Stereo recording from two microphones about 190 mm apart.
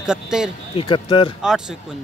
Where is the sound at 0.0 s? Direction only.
5° right (ahead or behind).